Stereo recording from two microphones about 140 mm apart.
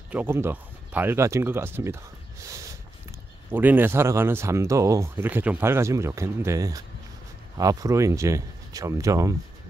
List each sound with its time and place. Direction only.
0.1 s speech: 15° right (ahead or behind)
2.4 s a sound: 25° right (ahead or behind)
3.5 s speech: 15° right (ahead or behind)